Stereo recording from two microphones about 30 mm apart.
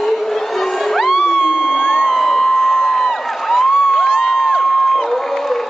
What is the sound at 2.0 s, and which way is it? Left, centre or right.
Music, centre.